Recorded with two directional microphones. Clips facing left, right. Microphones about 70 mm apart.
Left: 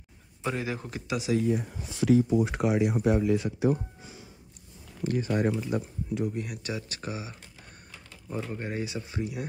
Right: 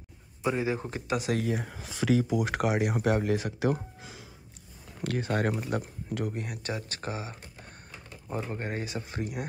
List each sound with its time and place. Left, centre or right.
0.6 s speech: right
1.4 s speech: right
5.0 s speech: right
8.1 s speech: right
8.6 s speech: right